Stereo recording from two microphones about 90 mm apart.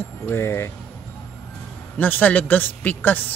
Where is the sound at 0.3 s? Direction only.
30° left (ahead or behind).